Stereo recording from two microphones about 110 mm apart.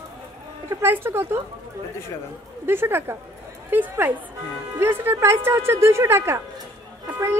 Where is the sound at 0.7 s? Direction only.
20° right (ahead or behind).